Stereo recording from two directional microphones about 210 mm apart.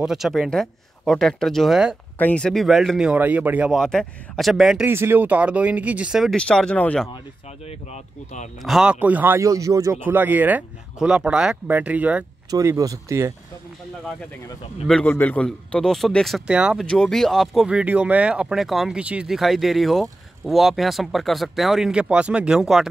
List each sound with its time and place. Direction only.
0.0 s a man's voice: centre (ahead or behind)
7.6 s speech: 35° left (ahead or behind)
8.6 s speech: 5° right (ahead or behind)
14.9 s a man's voice: 5° left (ahead or behind)